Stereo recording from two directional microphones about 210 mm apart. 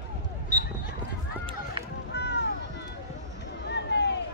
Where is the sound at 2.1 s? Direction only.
55° left (ahead or behind).